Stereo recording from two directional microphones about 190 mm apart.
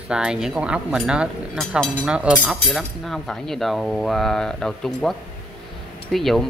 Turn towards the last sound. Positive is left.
turn(degrees=0)  # may be behind; listen again after turning